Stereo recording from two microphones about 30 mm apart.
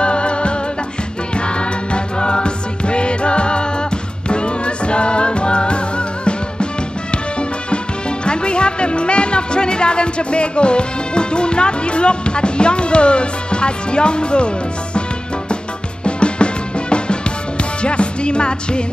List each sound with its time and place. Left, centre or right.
0.0 s music: left
16.0 s music: left